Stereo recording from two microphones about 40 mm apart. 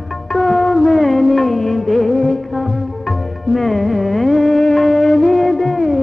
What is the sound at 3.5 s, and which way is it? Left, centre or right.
Music, centre.